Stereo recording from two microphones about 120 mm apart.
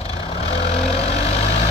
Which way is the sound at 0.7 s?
60° left (ahead or behind).